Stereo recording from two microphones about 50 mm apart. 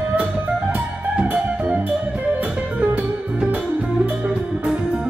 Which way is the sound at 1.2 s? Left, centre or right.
Right.